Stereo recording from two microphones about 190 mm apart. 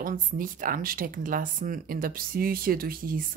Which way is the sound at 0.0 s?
45° right (ahead or behind).